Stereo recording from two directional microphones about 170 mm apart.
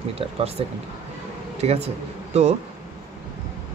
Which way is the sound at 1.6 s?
40° right (ahead or behind).